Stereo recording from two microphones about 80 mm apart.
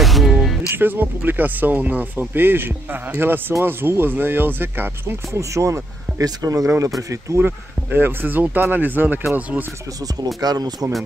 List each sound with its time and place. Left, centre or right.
0.0 s music: centre
0.7 s speech: right
5.4 s speech: right
7.4 s speech: right
10.2 s speech: right